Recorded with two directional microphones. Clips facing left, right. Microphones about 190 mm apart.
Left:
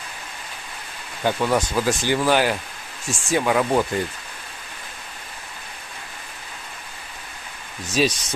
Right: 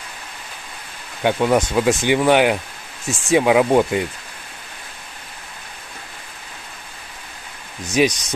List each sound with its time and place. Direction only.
1.2 s speech: 20° right (ahead or behind)
7.8 s speech: 20° right (ahead or behind)